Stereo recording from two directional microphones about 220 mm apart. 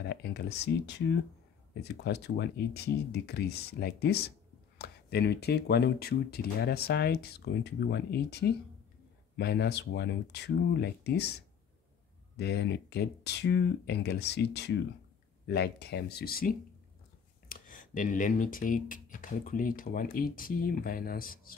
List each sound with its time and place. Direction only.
0.0 s speech: 50° left (ahead or behind)